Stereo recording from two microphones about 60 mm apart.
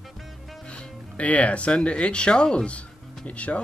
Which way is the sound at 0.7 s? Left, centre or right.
Left.